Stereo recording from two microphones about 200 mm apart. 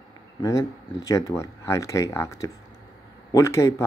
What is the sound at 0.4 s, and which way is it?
Speech, 15° left (ahead or behind).